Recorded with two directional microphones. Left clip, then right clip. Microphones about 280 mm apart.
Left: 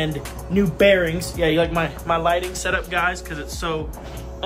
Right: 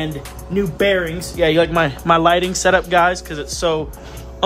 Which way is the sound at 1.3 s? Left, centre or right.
Right.